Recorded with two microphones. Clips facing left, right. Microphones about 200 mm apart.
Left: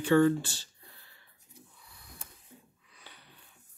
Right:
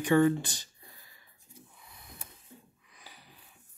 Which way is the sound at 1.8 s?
20° right (ahead or behind).